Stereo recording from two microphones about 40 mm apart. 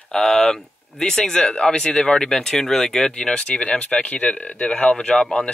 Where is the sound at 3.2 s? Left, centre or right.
Left.